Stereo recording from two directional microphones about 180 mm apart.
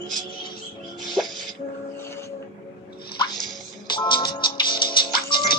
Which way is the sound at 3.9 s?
25° left (ahead or behind).